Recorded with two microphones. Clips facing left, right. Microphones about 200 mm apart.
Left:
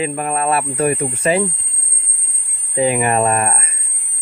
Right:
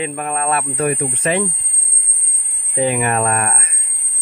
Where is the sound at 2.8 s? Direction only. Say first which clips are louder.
Left 2 dB; 30° left (ahead or behind).